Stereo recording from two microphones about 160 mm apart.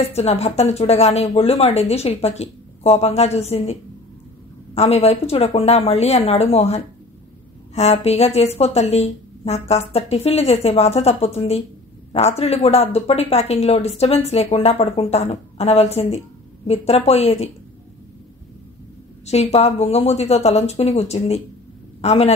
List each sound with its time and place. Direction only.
0.0 s speech: 40° left (ahead or behind)
4.7 s speech: 40° left (ahead or behind)
19.2 s a man's voice: 40° left (ahead or behind)